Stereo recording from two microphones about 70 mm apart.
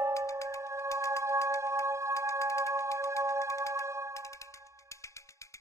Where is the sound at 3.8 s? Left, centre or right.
Right.